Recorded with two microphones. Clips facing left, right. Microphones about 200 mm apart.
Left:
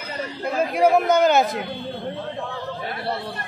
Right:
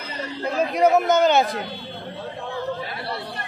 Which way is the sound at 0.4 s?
10° left (ahead or behind).